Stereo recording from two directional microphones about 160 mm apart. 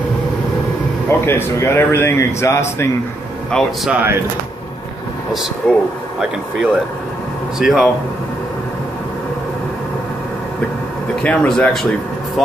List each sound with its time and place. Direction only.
1.0 s speech: 15° left (ahead or behind)
3.5 s speech: centre (ahead or behind)
5.3 s speech: centre (ahead or behind)
11.2 s speech: 5° left (ahead or behind)